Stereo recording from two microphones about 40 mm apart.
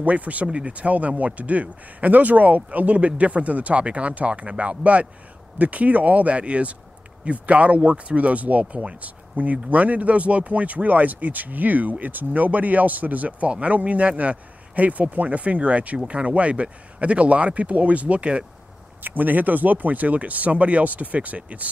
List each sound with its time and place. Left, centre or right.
0.0 s speech: right
19.0 s speech: right